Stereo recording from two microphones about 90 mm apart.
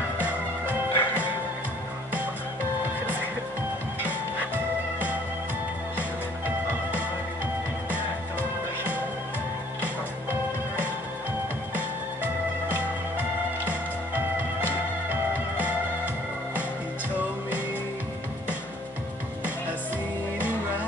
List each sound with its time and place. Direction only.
0.2 s music: 15° right (ahead or behind)
11.7 s music: 20° right (ahead or behind)
14.1 s music: 20° right (ahead or behind)